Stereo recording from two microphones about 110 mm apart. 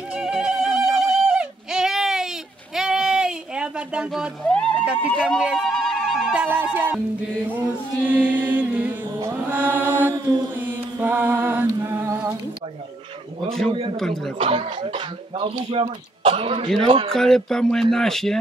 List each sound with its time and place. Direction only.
0.1 s music: 5° right (ahead or behind)
2.7 s a sound: 5° right (ahead or behind)
4.5 s horse: 10° left (ahead or behind)
5.3 s wind instrument: centre (ahead or behind)
6.3 s music: 15° right (ahead or behind)
10.6 s mantra: 15° right (ahead or behind)
13.9 s speech: 5° left (ahead or behind)
14.4 s speech: 55° right (ahead or behind)
17.1 s speech: 5° left (ahead or behind)